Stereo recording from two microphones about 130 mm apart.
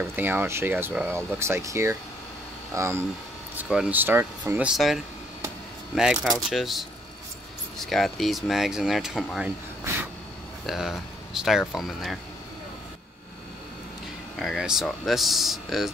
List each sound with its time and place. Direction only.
0.0 s speech: 15° right (ahead or behind)
3.5 s speech: 5° right (ahead or behind)
4.6 s speech: centre (ahead or behind)
6.3 s speech: centre (ahead or behind)
10.7 s speech: centre (ahead or behind)
14.4 s speech: centre (ahead or behind)